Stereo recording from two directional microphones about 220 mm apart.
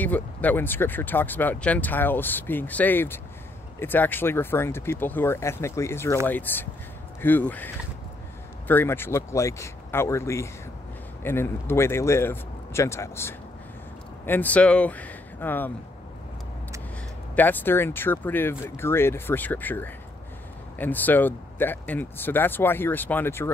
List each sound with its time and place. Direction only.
0.0 s speech: 5° left (ahead or behind)
17.4 s speech: 10° left (ahead or behind)